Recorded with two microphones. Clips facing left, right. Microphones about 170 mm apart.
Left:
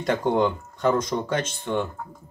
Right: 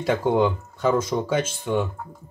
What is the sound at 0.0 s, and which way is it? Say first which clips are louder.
Speech: right 1 dB; 5° right (ahead or behind).